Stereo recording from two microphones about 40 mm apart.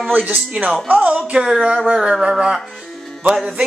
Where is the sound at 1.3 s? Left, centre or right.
Centre.